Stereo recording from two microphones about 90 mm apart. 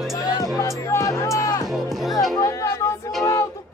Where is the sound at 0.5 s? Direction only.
35° left (ahead or behind).